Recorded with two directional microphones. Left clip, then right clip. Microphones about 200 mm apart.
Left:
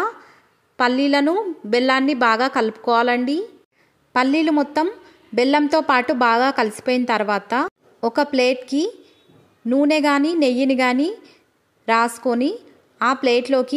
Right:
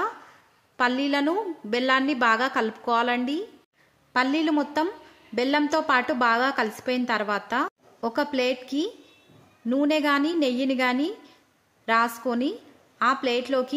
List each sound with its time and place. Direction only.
0.7 s a woman's voice: 20° left (ahead or behind)